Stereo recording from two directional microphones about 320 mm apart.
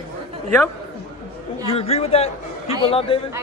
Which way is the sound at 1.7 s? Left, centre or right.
Centre.